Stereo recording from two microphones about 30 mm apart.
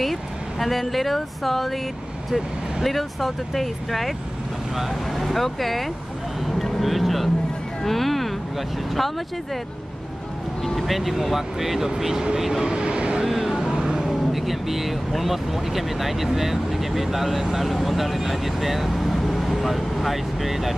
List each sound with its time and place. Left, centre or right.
0.0 s speech: centre
4.7 s speech: centre
5.2 s speech: centre
6.5 s vehicle: centre
7.8 s a sound: centre
10.6 s speech: centre
12.6 s speech: right
13.2 s vehicle: centre
14.0 s speech: centre
18.9 s vehicle: centre